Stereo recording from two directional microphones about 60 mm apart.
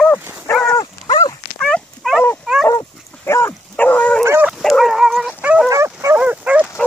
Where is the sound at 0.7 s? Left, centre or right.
Left.